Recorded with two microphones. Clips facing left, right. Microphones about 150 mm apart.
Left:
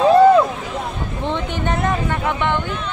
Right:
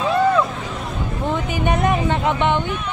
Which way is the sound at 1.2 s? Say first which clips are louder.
Right 1 dB; 5° right (ahead or behind).